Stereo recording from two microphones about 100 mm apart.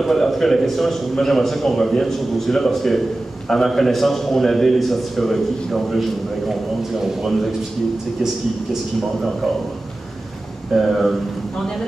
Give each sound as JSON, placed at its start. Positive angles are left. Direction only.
{"t": 0.0, "sound": "a man's voice", "side_deg": 0}
{"t": 10.7, "sound": "a man's voice", "side_deg": 0}